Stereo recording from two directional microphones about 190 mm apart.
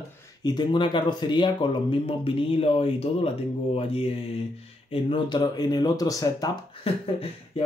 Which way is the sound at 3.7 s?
30° left (ahead or behind).